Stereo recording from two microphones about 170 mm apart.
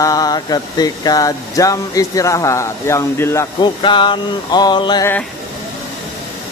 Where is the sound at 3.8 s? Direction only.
30° left (ahead or behind).